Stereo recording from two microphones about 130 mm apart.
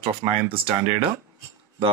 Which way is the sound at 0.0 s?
45° right (ahead or behind).